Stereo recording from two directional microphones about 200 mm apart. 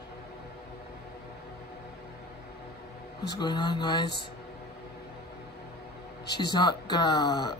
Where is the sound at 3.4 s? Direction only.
20° left (ahead or behind).